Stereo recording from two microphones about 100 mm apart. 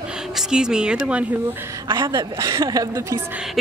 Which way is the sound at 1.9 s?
50° right (ahead or behind).